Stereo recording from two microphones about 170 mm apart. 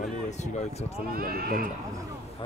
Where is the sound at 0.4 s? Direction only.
40° left (ahead or behind).